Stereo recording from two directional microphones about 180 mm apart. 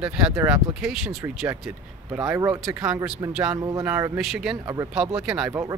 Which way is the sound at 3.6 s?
20° right (ahead or behind).